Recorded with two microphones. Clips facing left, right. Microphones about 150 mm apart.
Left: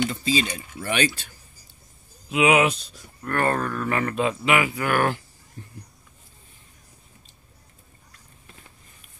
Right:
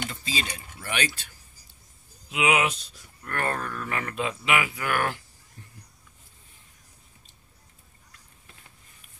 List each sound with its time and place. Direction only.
0.1 s speech: 25° left (ahead or behind)
2.3 s speech: 45° left (ahead or behind)